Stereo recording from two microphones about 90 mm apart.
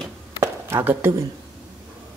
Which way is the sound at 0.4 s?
30° right (ahead or behind).